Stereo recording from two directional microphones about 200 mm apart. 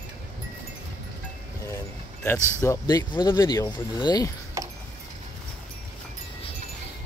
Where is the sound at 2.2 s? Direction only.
10° left (ahead or behind).